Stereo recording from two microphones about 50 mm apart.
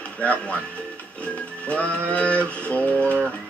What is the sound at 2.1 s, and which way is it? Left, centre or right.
Speech, left.